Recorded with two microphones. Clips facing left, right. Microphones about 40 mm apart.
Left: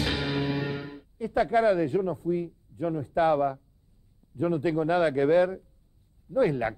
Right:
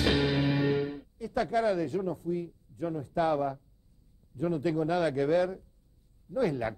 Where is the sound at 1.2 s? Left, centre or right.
Left.